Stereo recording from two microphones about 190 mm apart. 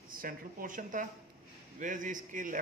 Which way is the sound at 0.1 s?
50° right (ahead or behind).